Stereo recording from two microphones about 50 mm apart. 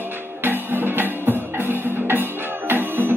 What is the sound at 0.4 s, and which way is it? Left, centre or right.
Music, right.